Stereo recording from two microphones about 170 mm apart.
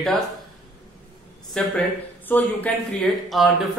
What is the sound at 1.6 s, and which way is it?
A man's voice, 5° left (ahead or behind).